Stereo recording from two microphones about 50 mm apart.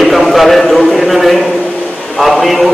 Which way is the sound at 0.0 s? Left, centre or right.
Centre.